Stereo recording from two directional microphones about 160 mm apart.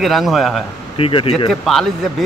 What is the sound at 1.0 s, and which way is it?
Speech, 35° left (ahead or behind).